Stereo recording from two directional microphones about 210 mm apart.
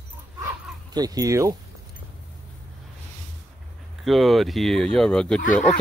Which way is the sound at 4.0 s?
Centre (ahead or behind).